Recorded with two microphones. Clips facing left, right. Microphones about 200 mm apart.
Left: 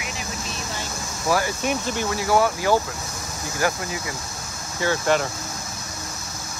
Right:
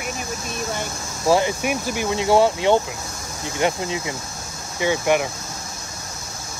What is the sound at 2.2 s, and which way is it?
Speech, 25° right (ahead or behind).